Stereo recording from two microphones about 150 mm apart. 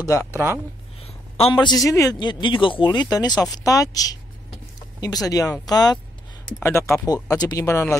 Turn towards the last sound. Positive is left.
turn(degrees=20)  # may be behind; listen again after turning